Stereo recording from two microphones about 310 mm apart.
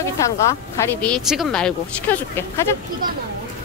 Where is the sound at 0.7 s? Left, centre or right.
Centre.